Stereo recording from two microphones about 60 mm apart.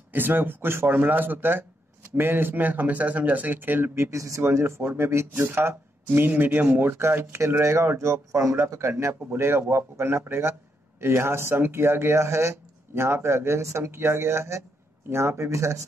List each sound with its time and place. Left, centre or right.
0.1 s speech: right
4.4 s speech: right
8.0 s speech: right
8.9 s speech: right